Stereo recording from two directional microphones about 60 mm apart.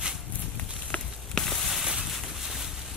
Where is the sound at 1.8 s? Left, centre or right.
Centre.